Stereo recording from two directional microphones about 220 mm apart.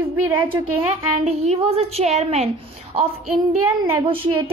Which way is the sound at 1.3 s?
25° right (ahead or behind).